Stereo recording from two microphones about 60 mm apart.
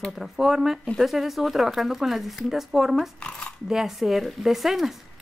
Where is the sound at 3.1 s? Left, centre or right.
Centre.